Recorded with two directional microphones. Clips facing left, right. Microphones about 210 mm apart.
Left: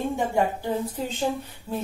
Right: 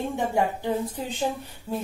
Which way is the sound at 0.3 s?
15° right (ahead or behind).